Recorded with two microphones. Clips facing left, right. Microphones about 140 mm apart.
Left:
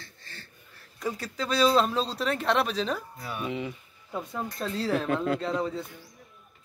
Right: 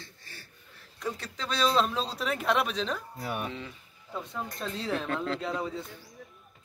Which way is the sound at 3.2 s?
60° right (ahead or behind).